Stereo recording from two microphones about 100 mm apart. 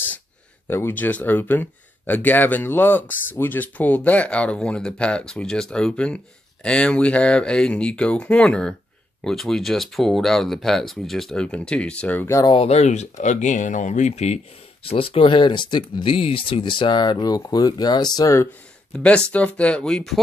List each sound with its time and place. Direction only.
0.7 s speech: 20° left (ahead or behind)
12.6 s speech: 90° left
14.1 s speech: 90° left; by 18.4 s 40° left (ahead or behind)
18.9 s speech: 10° left (ahead or behind)